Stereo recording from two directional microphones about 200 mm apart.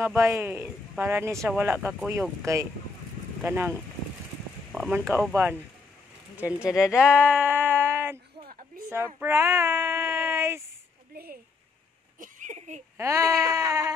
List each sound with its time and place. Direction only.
0.0 s speech: 10° right (ahead or behind)
3.4 s speech: 10° right (ahead or behind)
4.7 s speech: centre (ahead or behind)
8.8 s child singing: 10° right (ahead or behind)
12.2 s a sound: 40° right (ahead or behind)
12.9 s speech: 15° right (ahead or behind)